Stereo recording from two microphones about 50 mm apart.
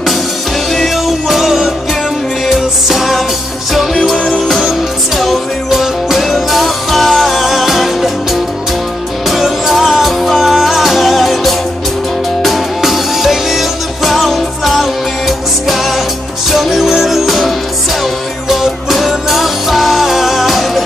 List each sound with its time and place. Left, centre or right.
0.7 s music: centre